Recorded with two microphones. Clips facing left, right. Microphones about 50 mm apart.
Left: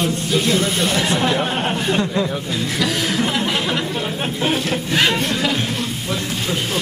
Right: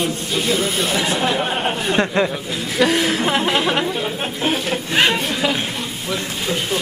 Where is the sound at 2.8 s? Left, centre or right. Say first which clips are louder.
Right 6 dB; right.